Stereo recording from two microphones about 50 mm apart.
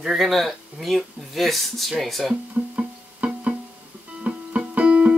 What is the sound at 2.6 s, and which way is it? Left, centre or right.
Music, right.